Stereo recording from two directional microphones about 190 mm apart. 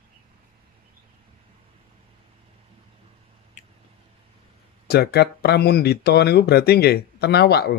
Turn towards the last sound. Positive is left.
turn(degrees=55)  # may be behind; listen again after turning